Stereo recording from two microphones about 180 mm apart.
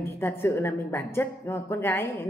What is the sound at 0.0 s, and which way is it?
Speech, 15° left (ahead or behind).